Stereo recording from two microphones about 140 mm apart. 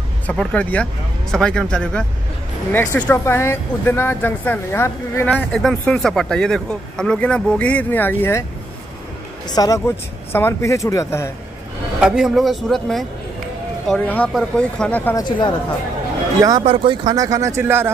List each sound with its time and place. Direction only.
0.3 s speech: 10° left (ahead or behind)
5.3 s speech: centre (ahead or behind); by 8.5 s 15° left (ahead or behind)
9.5 s speech: 25° left (ahead or behind)
12.0 s speech: 5° right (ahead or behind)
15.1 s speech: 30° left (ahead or behind)
16.3 s speech: 25° right (ahead or behind)
16.6 s speech: 40° right (ahead or behind); by 17.9 s 15° right (ahead or behind)